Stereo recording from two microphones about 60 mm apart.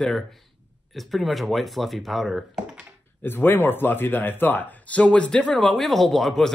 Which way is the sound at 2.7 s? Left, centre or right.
Centre.